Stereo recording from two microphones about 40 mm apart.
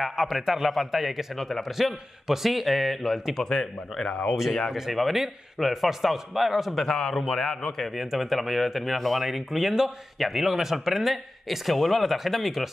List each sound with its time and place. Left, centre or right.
0.1 s speech: centre
3.4 s speech: centre
4.9 s speech: centre
6.9 s speech: centre
7.9 s speech: centre